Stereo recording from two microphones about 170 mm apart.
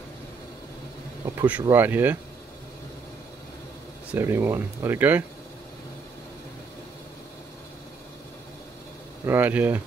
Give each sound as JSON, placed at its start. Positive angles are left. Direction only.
{"t": 1.5, "sound": "speech", "side_deg": -10}
{"t": 4.1, "sound": "speech", "side_deg": -15}
{"t": 9.2, "sound": "speech", "side_deg": -10}